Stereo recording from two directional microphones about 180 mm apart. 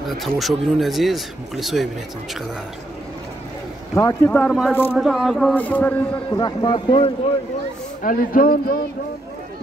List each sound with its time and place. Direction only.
0.0 s speech: centre (ahead or behind)
3.9 s speech: 15° left (ahead or behind); by 5.5 s centre (ahead or behind)
5.5 s speech: 10° left (ahead or behind)
6.1 s a man's voice: 25° left (ahead or behind)
8.0 s speech: 50° left (ahead or behind)